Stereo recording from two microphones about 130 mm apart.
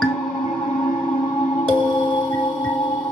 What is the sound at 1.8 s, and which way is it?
Music, 35° left (ahead or behind).